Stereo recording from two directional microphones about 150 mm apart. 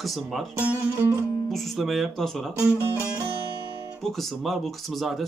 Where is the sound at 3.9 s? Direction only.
Centre (ahead or behind).